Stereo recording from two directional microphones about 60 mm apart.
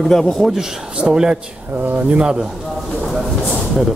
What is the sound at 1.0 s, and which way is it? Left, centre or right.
Speech, centre.